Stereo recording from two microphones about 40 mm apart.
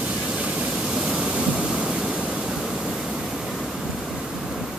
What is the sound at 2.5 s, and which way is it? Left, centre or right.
Waterfall, centre.